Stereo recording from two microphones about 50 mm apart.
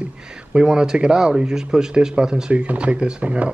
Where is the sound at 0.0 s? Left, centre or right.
Centre.